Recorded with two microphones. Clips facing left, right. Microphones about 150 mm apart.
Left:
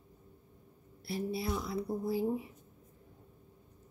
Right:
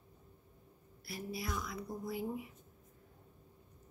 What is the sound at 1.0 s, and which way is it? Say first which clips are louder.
Speech: left 7 dB; 30° left (ahead or behind).